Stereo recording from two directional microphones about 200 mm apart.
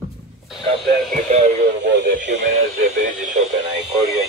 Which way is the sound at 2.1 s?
40° right (ahead or behind).